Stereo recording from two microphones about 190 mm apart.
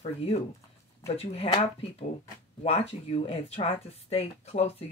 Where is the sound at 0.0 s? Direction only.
30° left (ahead or behind).